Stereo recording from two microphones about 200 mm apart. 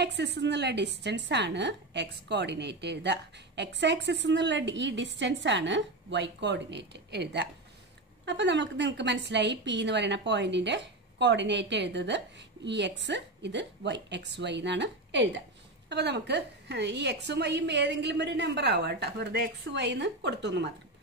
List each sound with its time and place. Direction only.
0.0 s a woman's voice: 55° right (ahead or behind)